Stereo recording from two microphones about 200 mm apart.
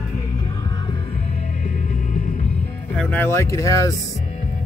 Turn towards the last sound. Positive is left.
turn(degrees=15)  # may be behind; listen again after turning